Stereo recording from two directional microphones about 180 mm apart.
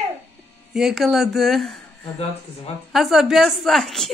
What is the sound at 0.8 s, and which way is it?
Speech, centre (ahead or behind).